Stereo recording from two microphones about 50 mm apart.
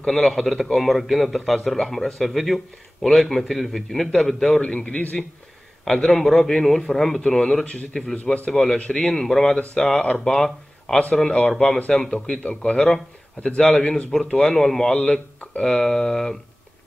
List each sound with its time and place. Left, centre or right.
0.0 s a man's voice: centre
4.6 s a man's voice: left
5.9 s a man's voice: centre
7.2 s a man's voice: centre